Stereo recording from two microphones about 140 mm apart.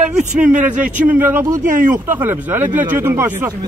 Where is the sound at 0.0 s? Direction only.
60° right (ahead or behind).